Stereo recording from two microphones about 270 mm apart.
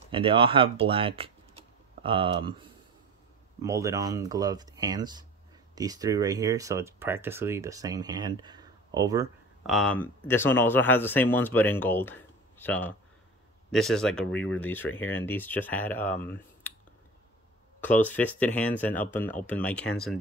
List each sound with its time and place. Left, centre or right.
0.1 s speech: centre
3.6 s speech: centre
9.6 s speech: centre
17.7 s speech: centre